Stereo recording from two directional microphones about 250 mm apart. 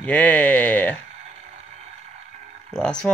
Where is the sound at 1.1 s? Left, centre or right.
Right.